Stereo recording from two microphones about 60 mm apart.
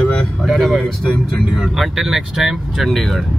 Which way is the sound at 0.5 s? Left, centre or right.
Centre.